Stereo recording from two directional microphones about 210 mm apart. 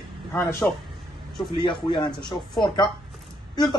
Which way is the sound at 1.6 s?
20° left (ahead or behind).